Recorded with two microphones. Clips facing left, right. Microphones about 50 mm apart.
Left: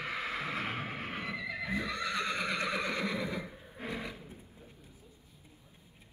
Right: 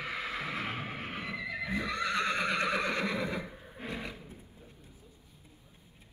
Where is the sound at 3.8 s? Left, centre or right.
Right.